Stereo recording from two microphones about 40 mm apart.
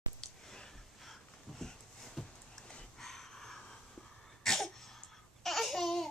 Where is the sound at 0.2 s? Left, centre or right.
Centre.